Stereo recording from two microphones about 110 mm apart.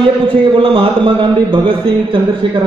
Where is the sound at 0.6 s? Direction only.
50° right (ahead or behind).